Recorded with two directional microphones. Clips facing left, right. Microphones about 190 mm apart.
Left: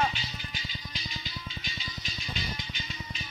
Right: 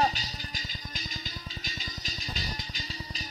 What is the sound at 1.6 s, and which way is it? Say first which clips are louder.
Music: even; 40° right (ahead or behind).